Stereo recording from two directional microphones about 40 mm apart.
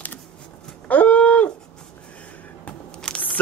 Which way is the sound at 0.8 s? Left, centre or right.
Left.